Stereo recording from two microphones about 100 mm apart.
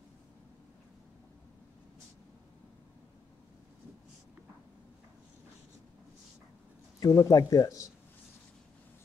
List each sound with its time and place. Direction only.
7.0 s speech: 35° left (ahead or behind)